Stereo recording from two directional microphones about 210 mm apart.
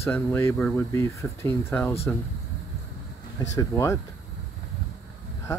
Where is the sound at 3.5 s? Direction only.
15° left (ahead or behind).